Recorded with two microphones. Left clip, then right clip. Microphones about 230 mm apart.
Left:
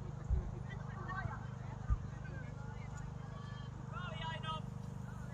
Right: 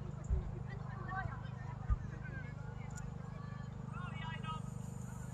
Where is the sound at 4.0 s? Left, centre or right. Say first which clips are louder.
Left 3 dB; left.